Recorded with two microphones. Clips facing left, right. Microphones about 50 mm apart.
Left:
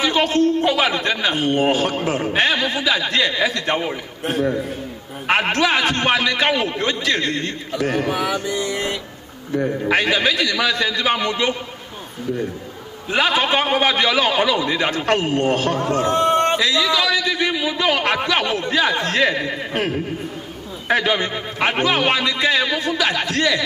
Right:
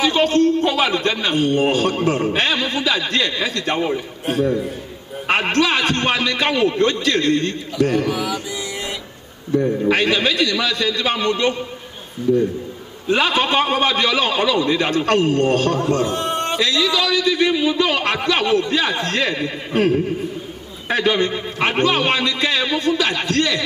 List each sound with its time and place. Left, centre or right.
0.2 s a man's voice: left
5.3 s a man's voice: left
8.1 s music: left
9.6 s a man's voice: left
13.1 s a man's voice: left
21.0 s a man's voice: left